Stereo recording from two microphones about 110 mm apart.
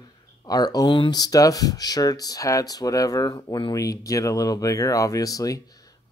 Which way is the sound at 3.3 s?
45° left (ahead or behind).